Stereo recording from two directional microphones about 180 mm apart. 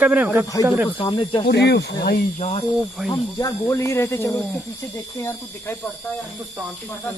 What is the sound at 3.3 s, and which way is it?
Speech, 15° left (ahead or behind).